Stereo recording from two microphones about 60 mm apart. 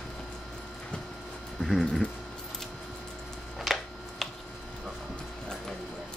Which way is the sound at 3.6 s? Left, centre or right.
Centre.